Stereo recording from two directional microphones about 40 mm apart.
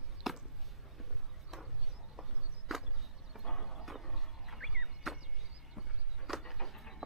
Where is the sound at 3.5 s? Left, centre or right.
Centre.